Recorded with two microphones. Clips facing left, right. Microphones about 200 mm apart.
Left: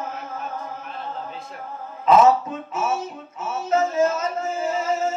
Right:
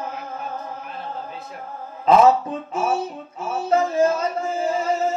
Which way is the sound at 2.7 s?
30° right (ahead or behind).